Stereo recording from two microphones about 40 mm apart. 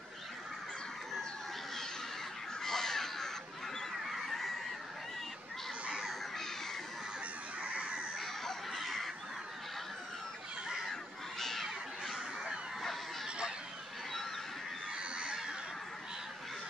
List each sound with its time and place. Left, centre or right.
2.6 s crow: centre
4.1 s goose: centre
7.7 s a sound: right
8.2 s goose: centre
10.8 s a sound: centre
11.6 s bird: centre
15.0 s goose: right